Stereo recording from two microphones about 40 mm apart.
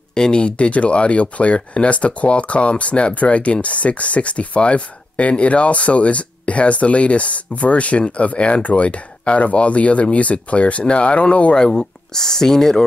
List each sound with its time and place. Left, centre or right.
0.1 s speech: left
11.5 s speech: centre